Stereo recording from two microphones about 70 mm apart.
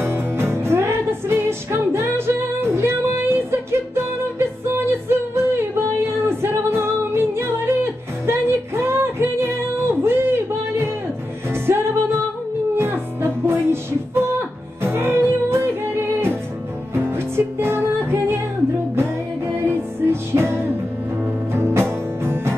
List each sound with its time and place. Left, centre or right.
0.0 s music: right
19.4 s music: right